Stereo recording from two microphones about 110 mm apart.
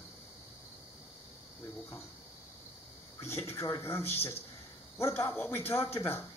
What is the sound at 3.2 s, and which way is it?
Speech, 25° left (ahead or behind).